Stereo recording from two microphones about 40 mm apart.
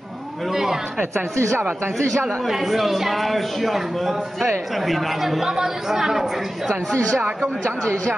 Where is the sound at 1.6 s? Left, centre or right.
Right.